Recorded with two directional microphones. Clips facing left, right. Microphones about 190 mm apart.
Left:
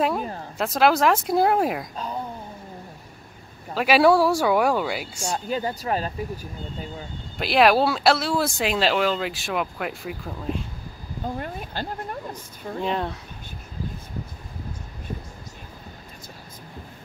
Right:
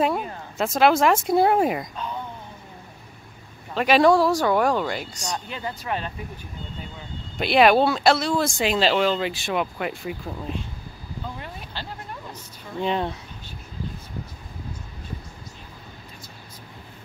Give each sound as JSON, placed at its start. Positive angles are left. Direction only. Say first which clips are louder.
{"t": 0.6, "sound": "speech", "louder": "right 1 dB", "side_deg": 0}
{"t": 2.0, "sound": "a sound", "louder": "left 1 dB", "side_deg": 35}
{"t": 3.7, "sound": "speech", "louder": "even", "side_deg": 5}
{"t": 5.5, "sound": "speech", "louder": "left 7 dB", "side_deg": 35}
{"t": 7.3, "sound": "speech", "louder": "right 1 dB", "side_deg": 0}
{"t": 11.2, "sound": "speech", "louder": "left 8 dB", "side_deg": 45}
{"t": 12.8, "sound": "speech", "louder": "right 2 dB", "side_deg": 0}